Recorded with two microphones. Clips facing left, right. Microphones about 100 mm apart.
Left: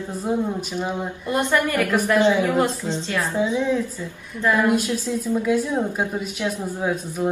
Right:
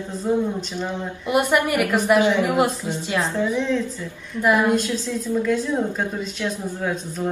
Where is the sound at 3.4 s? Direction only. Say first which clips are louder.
Even; 15° left (ahead or behind).